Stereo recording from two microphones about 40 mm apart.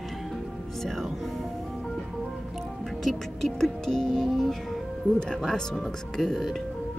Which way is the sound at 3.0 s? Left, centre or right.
Centre.